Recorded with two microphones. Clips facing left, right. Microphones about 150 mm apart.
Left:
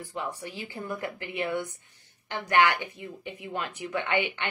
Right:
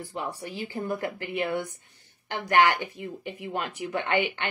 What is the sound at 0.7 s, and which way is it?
Speech, 35° right (ahead or behind).